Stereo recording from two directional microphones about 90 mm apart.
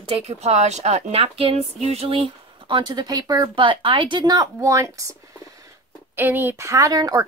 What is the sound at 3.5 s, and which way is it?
Speech, 70° right (ahead or behind).